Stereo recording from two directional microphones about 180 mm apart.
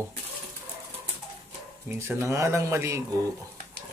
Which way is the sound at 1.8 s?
15° right (ahead or behind).